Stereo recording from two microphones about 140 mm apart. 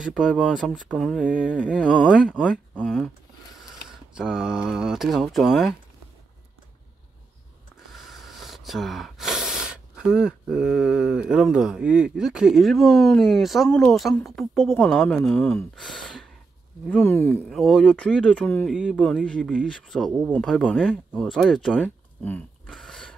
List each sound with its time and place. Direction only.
0.1 s speech: centre (ahead or behind)
1.2 s a sound: 10° right (ahead or behind)
1.5 s speech: 10° left (ahead or behind)
4.1 s speech: 5° right (ahead or behind)
7.9 s speech: centre (ahead or behind)
17.0 s speech: 15° left (ahead or behind)
17.5 s speech: centre (ahead or behind)
18.7 s speech: 5° right (ahead or behind)
19.2 s speech: 5° left (ahead or behind)
22.7 s a sound: centre (ahead or behind)